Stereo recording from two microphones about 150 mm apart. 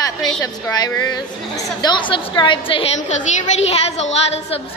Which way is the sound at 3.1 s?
45° left (ahead or behind).